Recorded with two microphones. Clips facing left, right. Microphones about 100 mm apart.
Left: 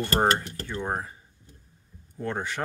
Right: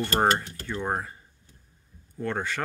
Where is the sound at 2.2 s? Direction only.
15° left (ahead or behind).